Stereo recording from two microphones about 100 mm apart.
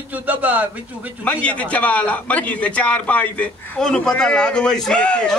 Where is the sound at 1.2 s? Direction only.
10° left (ahead or behind).